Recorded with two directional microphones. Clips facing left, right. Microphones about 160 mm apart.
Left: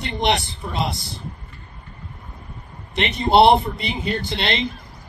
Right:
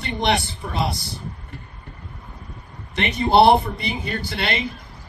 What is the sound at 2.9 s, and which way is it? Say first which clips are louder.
Speech: left 1 dB; 20° left (ahead or behind).